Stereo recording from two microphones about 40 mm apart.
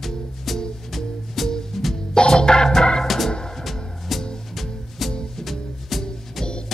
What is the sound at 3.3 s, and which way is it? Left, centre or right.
Music, centre.